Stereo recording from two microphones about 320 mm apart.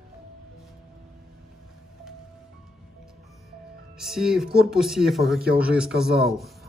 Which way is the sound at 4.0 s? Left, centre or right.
Centre.